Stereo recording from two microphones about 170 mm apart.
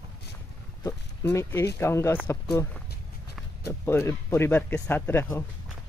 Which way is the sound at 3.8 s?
15° left (ahead or behind).